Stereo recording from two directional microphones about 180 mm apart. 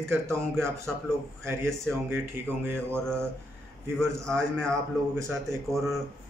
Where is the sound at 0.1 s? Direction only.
15° right (ahead or behind).